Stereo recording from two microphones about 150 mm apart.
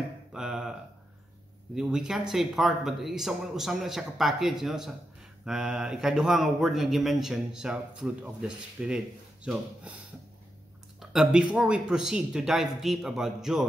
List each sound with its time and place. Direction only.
0.3 s a sound: 5° right (ahead or behind)
1.8 s speech: 5° right (ahead or behind)
11.0 s speech: 5° right (ahead or behind)